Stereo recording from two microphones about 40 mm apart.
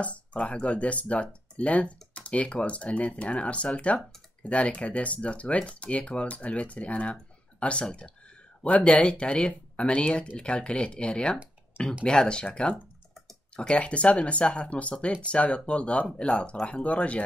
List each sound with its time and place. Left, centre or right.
0.0 s speech: left
8.6 s speech: left
13.6 s speech: left